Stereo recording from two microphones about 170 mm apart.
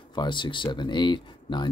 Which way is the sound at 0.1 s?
25° left (ahead or behind).